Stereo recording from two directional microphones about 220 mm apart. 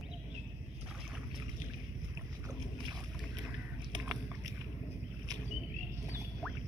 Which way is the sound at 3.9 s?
15° right (ahead or behind).